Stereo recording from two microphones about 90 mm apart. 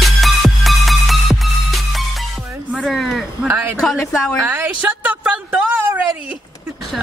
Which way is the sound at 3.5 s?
20° right (ahead or behind).